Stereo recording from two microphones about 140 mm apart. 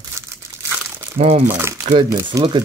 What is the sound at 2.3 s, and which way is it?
Speech, 30° right (ahead or behind).